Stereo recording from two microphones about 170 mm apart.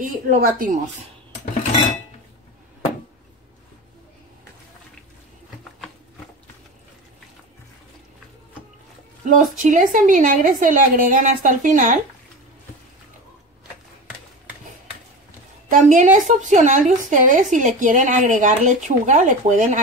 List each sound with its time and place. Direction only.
0.0 s speech: 55° right (ahead or behind)
9.2 s a woman's voice: 50° right (ahead or behind)
15.7 s a woman's voice: 50° right (ahead or behind)